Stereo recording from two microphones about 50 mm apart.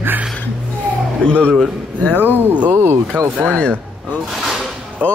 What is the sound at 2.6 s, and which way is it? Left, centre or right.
Speech, right.